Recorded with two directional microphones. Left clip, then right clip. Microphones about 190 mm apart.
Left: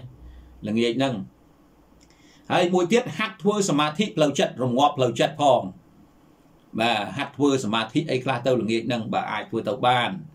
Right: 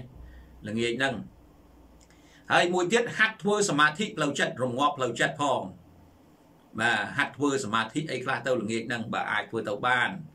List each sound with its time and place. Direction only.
0.6 s speech: 15° left (ahead or behind)
2.4 s speech: 10° left (ahead or behind)
6.7 s speech: 15° left (ahead or behind)